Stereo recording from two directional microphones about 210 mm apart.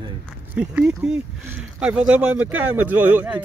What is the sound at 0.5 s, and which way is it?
Speech, 5° right (ahead or behind).